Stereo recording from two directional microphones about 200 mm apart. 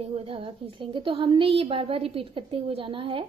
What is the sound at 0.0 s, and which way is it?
A woman's voice, 30° right (ahead or behind).